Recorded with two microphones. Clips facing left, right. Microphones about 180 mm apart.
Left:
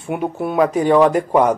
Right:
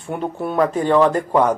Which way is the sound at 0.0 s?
10° left (ahead or behind).